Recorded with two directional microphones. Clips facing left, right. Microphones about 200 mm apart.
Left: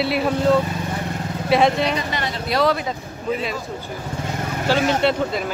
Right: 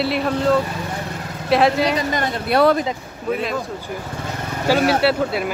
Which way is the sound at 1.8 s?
45° right (ahead or behind).